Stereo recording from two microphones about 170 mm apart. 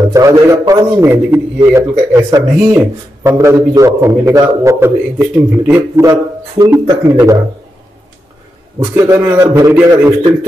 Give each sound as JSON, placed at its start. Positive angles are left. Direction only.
{"t": 0.0, "sound": "a man's voice", "side_deg": -20}
{"t": 8.7, "sound": "a man's voice", "side_deg": -20}